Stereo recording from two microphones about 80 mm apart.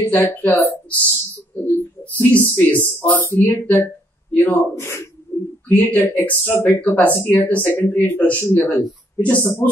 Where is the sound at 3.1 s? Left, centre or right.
Left.